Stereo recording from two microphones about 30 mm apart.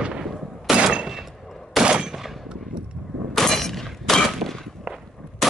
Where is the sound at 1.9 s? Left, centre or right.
Right.